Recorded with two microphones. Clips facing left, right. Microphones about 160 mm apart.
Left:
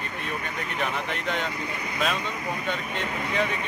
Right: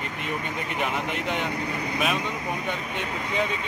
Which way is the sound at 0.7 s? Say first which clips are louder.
Right 1 dB; 15° right (ahead or behind).